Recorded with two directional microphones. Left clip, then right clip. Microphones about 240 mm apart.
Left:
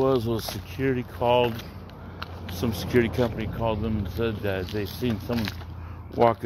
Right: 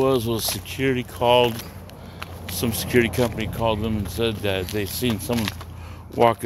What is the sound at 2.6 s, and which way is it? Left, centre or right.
Speech, centre.